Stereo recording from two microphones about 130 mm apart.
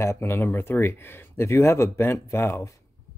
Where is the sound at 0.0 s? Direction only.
20° left (ahead or behind).